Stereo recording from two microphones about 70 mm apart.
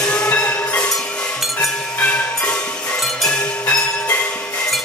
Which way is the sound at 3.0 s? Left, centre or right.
Centre.